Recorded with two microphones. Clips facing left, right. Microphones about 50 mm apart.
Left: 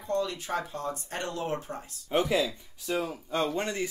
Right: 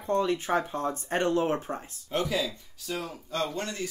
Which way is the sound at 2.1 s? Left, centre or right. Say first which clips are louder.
Left 3 dB; left.